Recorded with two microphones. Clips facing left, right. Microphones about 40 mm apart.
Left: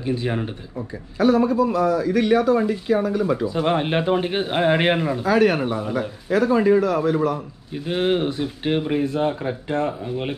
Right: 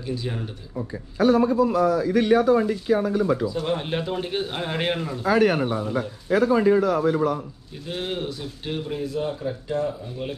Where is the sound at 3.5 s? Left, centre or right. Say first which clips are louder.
Left 5 dB; left.